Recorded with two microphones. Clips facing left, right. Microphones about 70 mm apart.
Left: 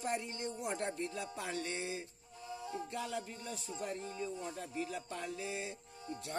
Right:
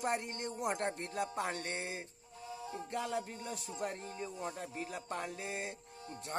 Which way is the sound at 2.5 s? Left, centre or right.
Centre.